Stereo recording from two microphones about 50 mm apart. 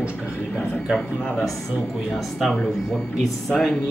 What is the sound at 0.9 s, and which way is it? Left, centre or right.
Speech, centre.